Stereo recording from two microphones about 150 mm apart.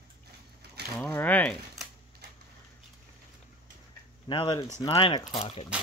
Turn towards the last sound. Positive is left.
turn(degrees=40)  # may be behind; listen again after turning